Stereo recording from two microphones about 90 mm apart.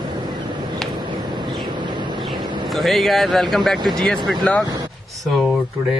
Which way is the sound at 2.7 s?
Centre (ahead or behind).